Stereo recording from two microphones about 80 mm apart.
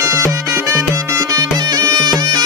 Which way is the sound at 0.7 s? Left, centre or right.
Right.